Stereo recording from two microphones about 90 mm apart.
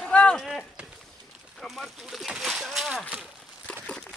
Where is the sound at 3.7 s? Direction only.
10° left (ahead or behind).